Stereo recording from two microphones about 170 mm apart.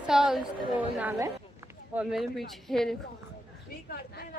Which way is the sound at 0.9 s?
15° right (ahead or behind).